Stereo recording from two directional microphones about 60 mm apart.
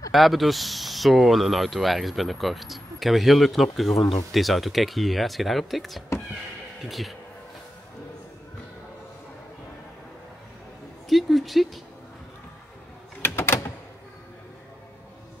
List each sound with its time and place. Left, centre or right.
0.1 s speech: centre
11.1 s speech: centre
13.2 s a sound: left